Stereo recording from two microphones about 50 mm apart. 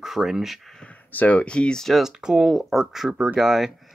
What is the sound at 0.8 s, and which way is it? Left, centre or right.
Speech, left.